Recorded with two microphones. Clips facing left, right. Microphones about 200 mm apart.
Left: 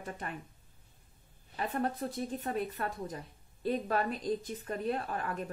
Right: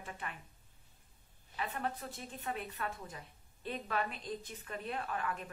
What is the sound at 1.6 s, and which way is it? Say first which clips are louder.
A woman's voice: left 6 dB; 40° left (ahead or behind).